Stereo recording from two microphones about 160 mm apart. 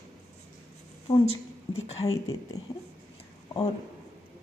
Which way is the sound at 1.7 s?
25° left (ahead or behind).